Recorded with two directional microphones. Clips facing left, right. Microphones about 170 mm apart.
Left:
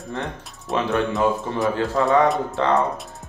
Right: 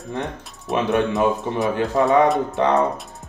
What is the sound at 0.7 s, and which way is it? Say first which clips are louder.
Speech: right 2 dB; centre (ahead or behind).